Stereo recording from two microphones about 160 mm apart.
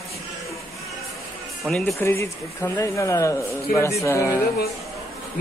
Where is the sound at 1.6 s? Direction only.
Centre (ahead or behind).